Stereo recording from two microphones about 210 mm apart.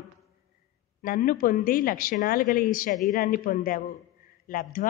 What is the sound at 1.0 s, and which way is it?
A man's voice, 40° left (ahead or behind).